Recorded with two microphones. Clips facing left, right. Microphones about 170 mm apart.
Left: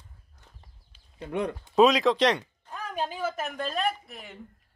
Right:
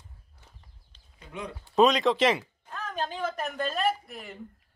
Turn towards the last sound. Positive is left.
turn(degrees=0)  # may be behind; listen again after turning